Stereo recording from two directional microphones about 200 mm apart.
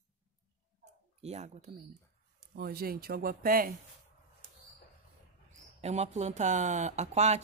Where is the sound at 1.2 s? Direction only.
35° right (ahead or behind).